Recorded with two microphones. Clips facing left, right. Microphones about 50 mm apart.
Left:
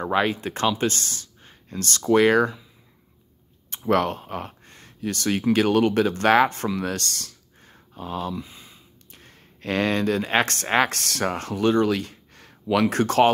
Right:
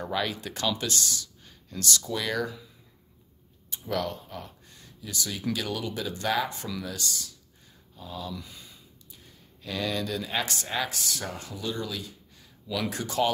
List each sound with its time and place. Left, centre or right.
0.0 s speech: left
3.7 s speech: left
8.4 s speech: left
9.1 s speech: left